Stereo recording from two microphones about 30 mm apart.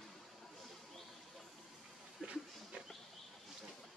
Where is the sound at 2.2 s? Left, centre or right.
Centre.